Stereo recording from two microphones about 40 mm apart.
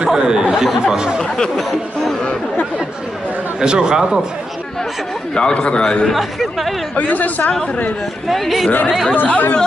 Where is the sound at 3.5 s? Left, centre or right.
Right.